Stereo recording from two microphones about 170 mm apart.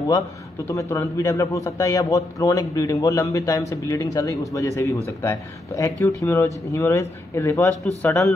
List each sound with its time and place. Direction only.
0.7 s a man's voice: 15° left (ahead or behind)